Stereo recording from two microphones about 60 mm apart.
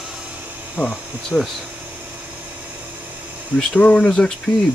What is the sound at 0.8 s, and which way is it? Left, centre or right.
Speech, centre.